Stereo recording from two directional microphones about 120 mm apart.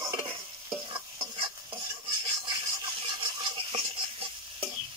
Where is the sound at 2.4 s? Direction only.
45° right (ahead or behind).